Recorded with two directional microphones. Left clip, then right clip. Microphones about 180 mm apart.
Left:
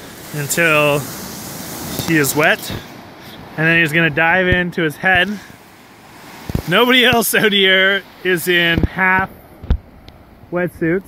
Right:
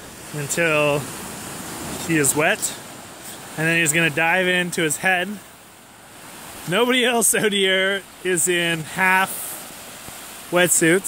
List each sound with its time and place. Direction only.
0.4 s speech: centre (ahead or behind)
2.0 s speech: 5° right (ahead or behind)
6.7 s speech: centre (ahead or behind)
10.5 s speech: 20° right (ahead or behind)